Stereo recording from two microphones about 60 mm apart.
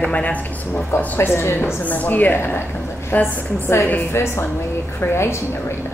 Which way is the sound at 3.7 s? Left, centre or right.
Left.